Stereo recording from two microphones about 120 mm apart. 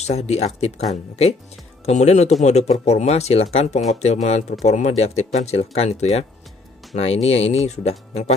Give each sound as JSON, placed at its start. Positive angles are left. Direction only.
{"t": 0.0, "sound": "speech", "side_deg": 65}
{"t": 1.9, "sound": "speech", "side_deg": 70}